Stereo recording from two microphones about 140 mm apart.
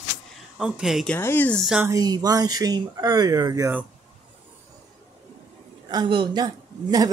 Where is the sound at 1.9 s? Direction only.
25° right (ahead or behind).